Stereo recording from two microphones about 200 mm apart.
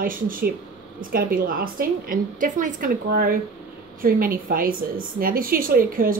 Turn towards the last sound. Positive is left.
turn(degrees=-45)  # may be behind; listen again after turning